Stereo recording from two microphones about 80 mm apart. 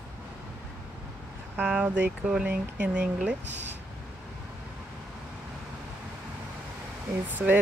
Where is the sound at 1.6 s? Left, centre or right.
Centre.